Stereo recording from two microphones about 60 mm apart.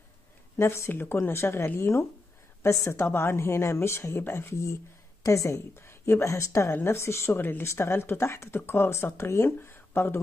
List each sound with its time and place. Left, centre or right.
0.6 s a woman's voice: left
3.2 s a woman's voice: left
6.7 s a woman's voice: left
7.3 s speech: left
7.6 s a woman's voice: left